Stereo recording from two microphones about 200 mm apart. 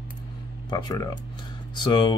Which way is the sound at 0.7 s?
20° left (ahead or behind).